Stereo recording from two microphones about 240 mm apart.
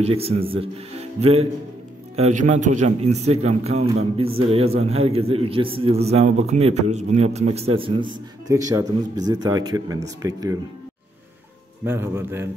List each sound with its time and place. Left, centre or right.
0.0 s a man's voice: right
11.8 s a man's voice: centre